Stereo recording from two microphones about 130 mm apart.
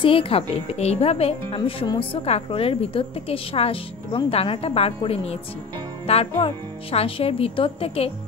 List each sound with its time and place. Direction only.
0.0 s a woman's voice: 45° left (ahead or behind)